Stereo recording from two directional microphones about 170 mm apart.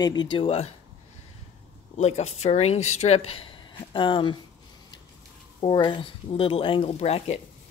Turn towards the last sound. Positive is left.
turn(degrees=35)  # may be behind; listen again after turning